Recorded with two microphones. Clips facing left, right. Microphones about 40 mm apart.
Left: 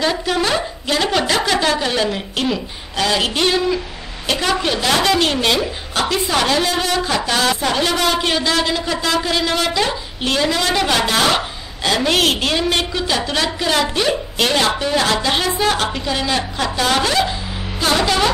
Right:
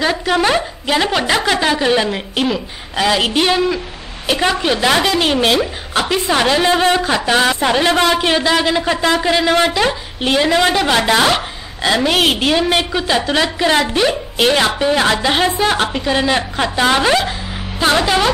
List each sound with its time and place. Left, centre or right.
0.0 s a woman's voice: centre
10.7 s a woman's voice: centre
11.0 s a woman's voice: right
18.0 s a woman's voice: centre